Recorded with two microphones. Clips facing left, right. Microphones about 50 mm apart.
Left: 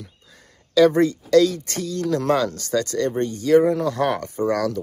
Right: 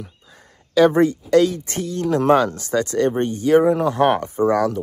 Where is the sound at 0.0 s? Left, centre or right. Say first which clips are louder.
Right 4 dB; right.